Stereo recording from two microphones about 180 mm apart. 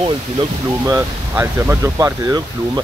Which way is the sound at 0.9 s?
15° right (ahead or behind).